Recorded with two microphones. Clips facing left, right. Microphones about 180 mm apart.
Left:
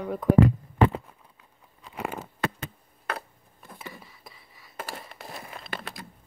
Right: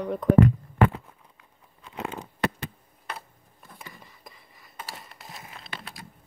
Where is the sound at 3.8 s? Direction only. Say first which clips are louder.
Left 4 dB; 5° left (ahead or behind).